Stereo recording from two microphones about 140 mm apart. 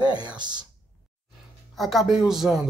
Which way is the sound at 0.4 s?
30° right (ahead or behind).